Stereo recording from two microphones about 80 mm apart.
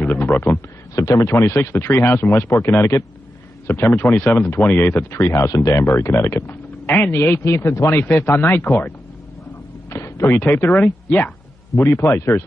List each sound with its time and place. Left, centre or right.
0.0 s a man's voice: left
0.9 s speech: left
5.3 s speech: left
7.9 s speech: left
9.8 s speech: left; by 11.3 s centre
11.7 s a man's voice: left